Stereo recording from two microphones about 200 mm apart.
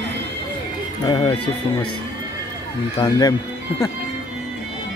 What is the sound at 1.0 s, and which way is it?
Speech, 20° left (ahead or behind).